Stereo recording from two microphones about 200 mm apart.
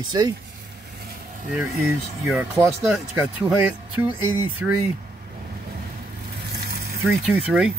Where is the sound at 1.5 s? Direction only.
10° right (ahead or behind).